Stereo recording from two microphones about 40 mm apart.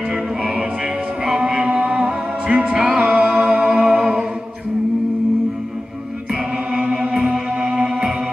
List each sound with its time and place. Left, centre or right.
0.1 s music: right
6.8 s music: right